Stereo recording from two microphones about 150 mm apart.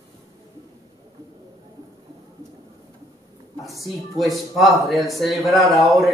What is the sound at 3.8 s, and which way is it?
Speech, centre (ahead or behind).